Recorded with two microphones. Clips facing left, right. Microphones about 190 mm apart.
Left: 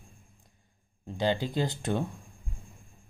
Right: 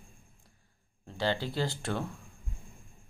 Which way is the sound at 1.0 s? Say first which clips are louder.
Left 3 dB; 15° left (ahead or behind).